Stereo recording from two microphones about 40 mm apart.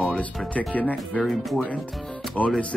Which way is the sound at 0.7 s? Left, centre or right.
Left.